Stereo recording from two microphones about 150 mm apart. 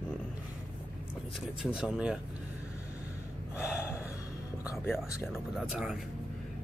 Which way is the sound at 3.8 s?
15° left (ahead or behind).